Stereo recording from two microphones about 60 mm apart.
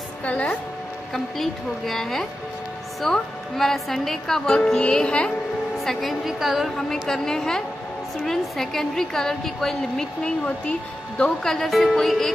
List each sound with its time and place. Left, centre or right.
0.2 s a woman's voice: left
1.1 s a woman's voice: centre
5.9 s a woman's voice: centre
6.9 s a woman's voice: centre